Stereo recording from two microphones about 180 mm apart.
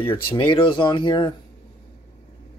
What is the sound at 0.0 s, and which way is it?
Speech, 25° left (ahead or behind).